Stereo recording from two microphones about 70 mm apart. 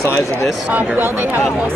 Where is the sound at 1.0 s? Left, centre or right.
Right.